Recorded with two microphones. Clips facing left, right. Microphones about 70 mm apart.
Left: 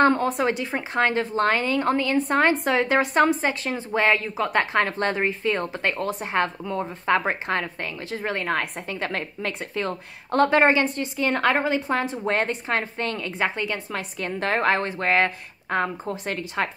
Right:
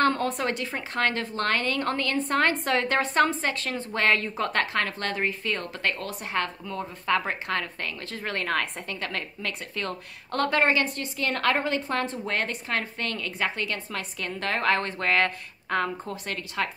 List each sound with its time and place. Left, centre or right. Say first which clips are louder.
0.0 s a woman's voice: left 5 dB; left
12.3 s a woman's voice: left 5 dB; left